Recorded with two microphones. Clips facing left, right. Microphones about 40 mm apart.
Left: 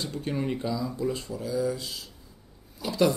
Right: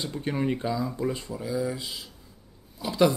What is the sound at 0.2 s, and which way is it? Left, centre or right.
Speech, right.